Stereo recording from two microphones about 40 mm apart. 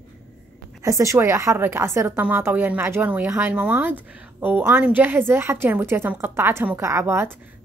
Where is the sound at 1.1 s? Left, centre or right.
Right.